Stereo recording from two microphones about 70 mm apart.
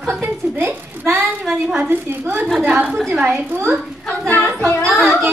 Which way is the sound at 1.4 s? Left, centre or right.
Centre.